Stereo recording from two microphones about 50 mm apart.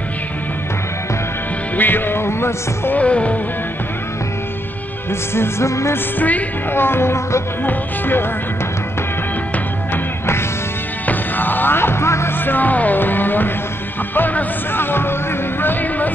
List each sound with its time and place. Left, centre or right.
1.8 s music: left
2.9 s music: left
5.3 s music: left
6.1 s speech: left
6.7 s music: left
7.6 s music: left
11.1 s music: left
12.4 s music: left
15.6 s a sound: left